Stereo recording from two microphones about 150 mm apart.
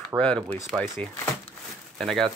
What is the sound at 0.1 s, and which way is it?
Speech, 20° right (ahead or behind).